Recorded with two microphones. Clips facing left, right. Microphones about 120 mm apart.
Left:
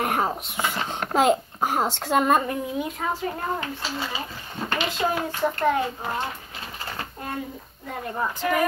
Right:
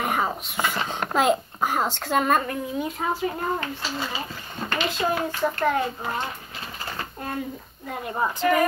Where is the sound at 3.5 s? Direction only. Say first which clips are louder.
Right 1 dB; 10° left (ahead or behind).